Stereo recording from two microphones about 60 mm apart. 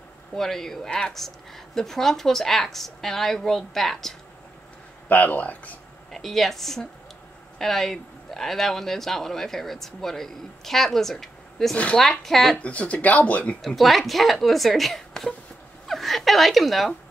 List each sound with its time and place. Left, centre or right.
0.3 s a man's voice: centre
5.0 s speech: left
6.1 s a man's voice: centre
11.7 s speech: centre
12.0 s a man's voice: centre
12.6 s speech: left
13.6 s a man's voice: centre